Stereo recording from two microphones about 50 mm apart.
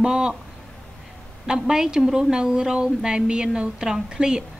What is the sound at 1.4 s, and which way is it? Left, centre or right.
Speech, centre.